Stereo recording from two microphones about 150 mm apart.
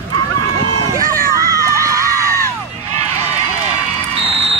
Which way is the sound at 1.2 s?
20° right (ahead or behind).